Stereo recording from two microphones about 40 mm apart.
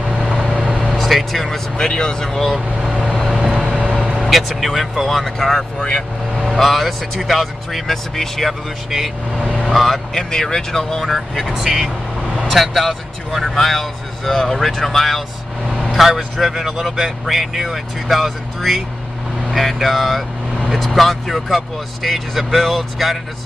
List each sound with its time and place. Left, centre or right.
0.3 s vehicle: centre
0.8 s vehicle: centre
1.8 s speech: centre
2.2 s speech: centre
3.6 s vehicle: right
4.2 s vehicle: centre
4.6 s speech: centre
5.8 s speech: left
6.5 s speech: centre
8.5 s speech: centre
9.5 s speech: centre
11.0 s speech: centre
11.5 s speech: centre
15.9 s speech: centre